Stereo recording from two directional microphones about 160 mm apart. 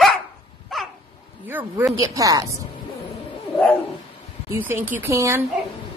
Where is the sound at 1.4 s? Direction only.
10° right (ahead or behind).